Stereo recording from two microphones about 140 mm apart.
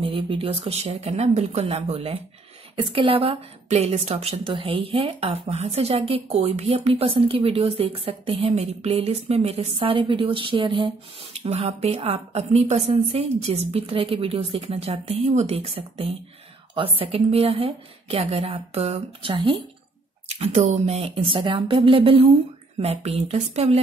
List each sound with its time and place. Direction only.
0.0 s speech: 40° right (ahead or behind)
20.2 s speech: 50° right (ahead or behind)